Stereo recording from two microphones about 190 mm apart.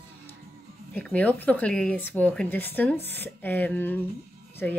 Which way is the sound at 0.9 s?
5° left (ahead or behind).